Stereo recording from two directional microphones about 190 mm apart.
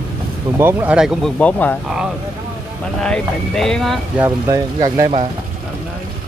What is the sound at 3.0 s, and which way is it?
Speech, 5° left (ahead or behind).